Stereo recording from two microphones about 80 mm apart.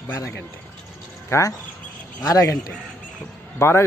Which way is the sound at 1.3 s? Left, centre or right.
Left.